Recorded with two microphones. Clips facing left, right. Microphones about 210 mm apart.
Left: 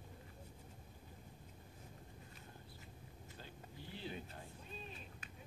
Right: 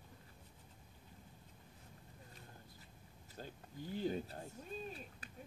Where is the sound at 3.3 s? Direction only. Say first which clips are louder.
Right 7 dB; 45° right (ahead or behind).